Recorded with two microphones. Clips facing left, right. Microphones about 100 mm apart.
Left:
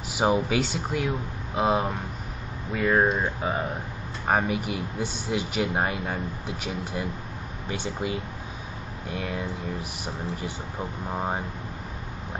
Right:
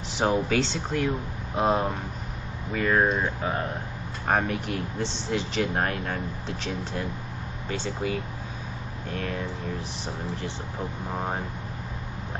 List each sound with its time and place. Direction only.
0.1 s a sound: 10° left (ahead or behind)
0.5 s speech: 10° left (ahead or behind)
11.1 s speech: 10° left (ahead or behind)